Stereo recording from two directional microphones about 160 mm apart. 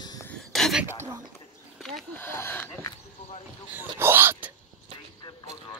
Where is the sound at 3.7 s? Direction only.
15° right (ahead or behind).